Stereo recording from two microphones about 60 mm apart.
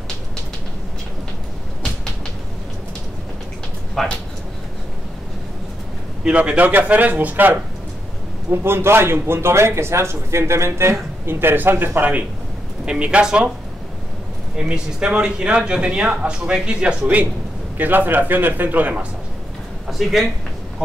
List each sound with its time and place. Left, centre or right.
4.0 s speech: centre
6.2 s speech: right
8.5 s a man's voice: right
12.8 s speech: centre
14.6 s a man's voice: centre
19.9 s speech: centre